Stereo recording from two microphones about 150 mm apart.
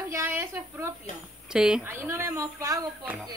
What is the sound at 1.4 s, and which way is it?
Speech, 5° right (ahead or behind).